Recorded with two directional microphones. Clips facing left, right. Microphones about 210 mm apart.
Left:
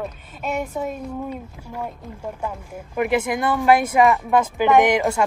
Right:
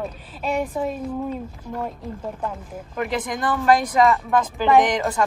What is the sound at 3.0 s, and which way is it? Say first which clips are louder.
Speech: left 5 dB; 10° left (ahead or behind).